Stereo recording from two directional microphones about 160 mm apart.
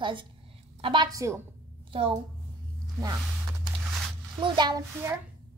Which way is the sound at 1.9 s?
35° right (ahead or behind).